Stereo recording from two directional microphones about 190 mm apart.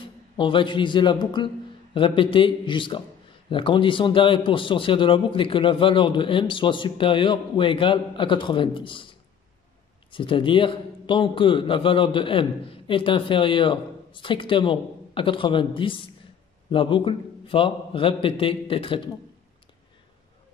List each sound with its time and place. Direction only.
0.0 s a man's voice: 25° left (ahead or behind)
10.1 s a man's voice: 25° left (ahead or behind)